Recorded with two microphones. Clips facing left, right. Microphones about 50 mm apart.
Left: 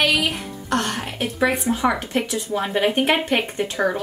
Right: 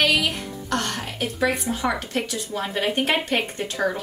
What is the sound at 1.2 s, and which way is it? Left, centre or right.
Speech, centre.